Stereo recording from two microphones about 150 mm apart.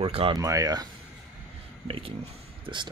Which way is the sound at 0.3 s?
25° right (ahead or behind).